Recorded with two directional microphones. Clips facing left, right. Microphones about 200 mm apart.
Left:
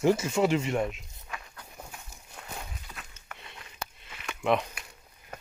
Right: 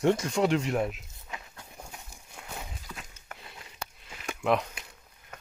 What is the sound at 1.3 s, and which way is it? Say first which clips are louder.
Walk: even; 20° right (ahead or behind).